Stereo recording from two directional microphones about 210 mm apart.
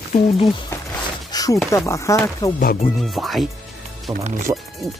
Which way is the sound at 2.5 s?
40° left (ahead or behind).